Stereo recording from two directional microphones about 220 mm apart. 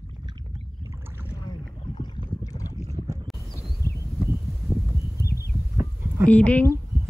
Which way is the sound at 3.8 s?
15° left (ahead or behind).